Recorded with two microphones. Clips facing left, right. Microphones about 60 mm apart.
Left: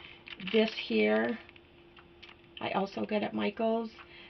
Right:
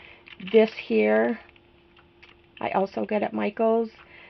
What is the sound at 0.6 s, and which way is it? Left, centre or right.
Speech, right.